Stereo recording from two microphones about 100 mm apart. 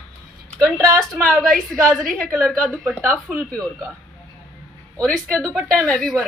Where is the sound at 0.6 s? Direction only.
30° right (ahead or behind).